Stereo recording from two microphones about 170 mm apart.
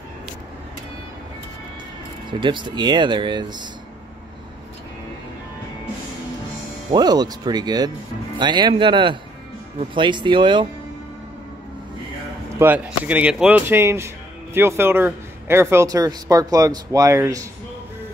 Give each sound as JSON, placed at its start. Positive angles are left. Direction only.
{"t": 2.4, "sound": "speech", "side_deg": -25}
{"t": 6.9, "sound": "speech", "side_deg": -25}
{"t": 12.5, "sound": "speech", "side_deg": -10}